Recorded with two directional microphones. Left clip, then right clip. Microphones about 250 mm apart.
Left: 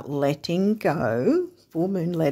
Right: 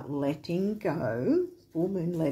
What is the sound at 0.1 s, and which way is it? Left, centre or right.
Speech, left.